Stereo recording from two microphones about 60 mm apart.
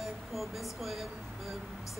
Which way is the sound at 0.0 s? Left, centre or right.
Centre.